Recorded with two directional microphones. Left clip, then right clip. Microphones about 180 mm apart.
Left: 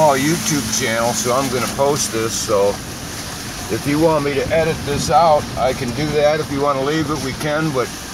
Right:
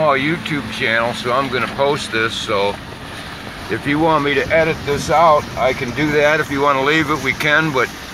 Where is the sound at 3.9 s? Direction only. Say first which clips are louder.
Right 1 dB; 15° right (ahead or behind).